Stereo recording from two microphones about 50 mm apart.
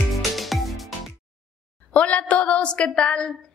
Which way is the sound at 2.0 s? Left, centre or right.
Left.